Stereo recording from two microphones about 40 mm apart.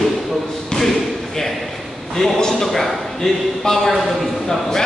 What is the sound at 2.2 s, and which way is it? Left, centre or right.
A man's voice, centre.